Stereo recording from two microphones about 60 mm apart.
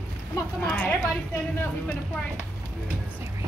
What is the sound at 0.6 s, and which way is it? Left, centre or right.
Speech, left.